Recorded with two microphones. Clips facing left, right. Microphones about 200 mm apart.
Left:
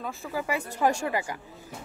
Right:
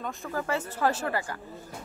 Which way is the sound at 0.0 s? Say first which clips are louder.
Even; centre (ahead or behind).